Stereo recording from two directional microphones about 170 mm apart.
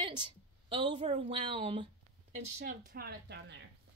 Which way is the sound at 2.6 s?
65° right (ahead or behind).